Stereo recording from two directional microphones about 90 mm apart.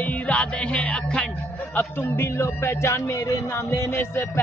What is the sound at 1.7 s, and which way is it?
Speech, 25° left (ahead or behind).